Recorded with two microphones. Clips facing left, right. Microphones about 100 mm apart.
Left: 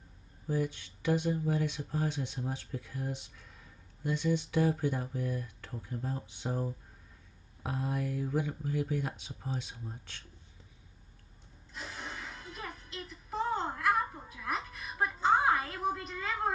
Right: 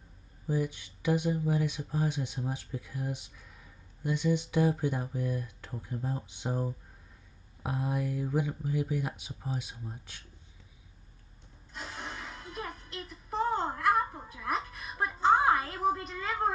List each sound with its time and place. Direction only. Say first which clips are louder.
0.5 s speech: right 1 dB; 15° right (ahead or behind)
11.7 s music: right 2 dB; 55° right (ahead or behind)
15.4 s a sound: right 3 dB; 40° right (ahead or behind)